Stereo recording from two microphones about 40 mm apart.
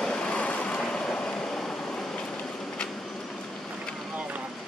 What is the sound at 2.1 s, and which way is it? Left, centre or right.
Vehicle, centre.